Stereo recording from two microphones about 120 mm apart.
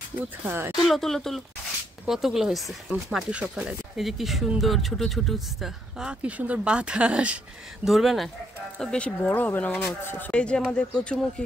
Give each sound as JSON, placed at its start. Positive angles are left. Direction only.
{"t": 0.5, "sound": "speech", "side_deg": -20}
{"t": 0.8, "sound": "speech", "side_deg": 5}